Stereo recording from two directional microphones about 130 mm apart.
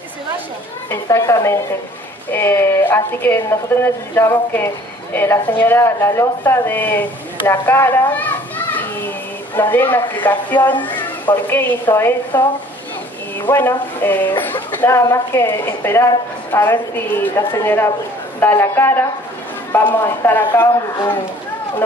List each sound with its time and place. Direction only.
0.8 s a woman's voice: 25° left (ahead or behind)
8.1 s children playing: 15° left (ahead or behind)
9.6 s a woman's voice: 15° left (ahead or behind)
13.5 s a woman's voice: 20° left (ahead or behind)